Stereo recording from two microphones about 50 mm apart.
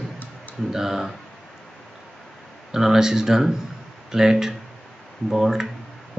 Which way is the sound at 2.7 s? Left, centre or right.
Centre.